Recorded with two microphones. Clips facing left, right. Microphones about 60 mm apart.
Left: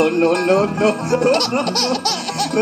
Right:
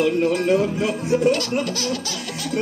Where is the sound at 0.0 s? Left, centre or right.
Left.